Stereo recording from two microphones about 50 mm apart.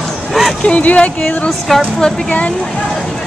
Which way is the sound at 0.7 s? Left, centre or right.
Left.